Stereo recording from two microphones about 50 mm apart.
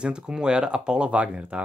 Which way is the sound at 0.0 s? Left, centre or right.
Centre.